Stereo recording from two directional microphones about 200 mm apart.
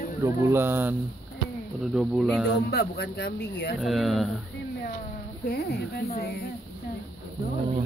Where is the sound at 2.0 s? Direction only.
Centre (ahead or behind).